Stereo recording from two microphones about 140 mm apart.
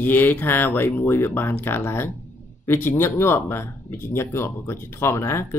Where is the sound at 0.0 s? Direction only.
15° left (ahead or behind).